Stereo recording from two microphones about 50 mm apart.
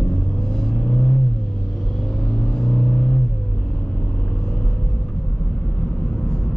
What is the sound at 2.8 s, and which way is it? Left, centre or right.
Vehicle, left.